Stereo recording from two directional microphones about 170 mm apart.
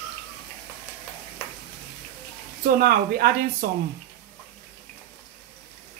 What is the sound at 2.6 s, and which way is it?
Speech, 60° right (ahead or behind).